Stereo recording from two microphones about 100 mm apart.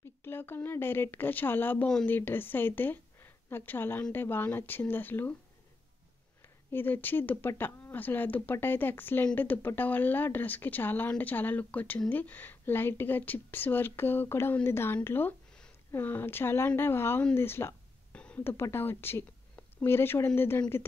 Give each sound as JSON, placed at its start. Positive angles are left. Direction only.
{"t": 0.2, "sound": "a woman's voice", "side_deg": 20}
{"t": 6.4, "sound": "speech", "side_deg": 20}
{"t": 18.1, "sound": "a sound", "side_deg": 10}
{"t": 18.4, "sound": "speech", "side_deg": 25}